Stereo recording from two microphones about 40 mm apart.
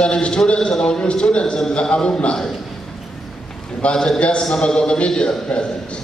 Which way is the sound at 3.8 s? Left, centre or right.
Left.